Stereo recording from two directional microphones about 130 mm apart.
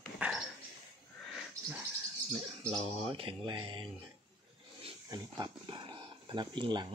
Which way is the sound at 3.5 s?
40° right (ahead or behind).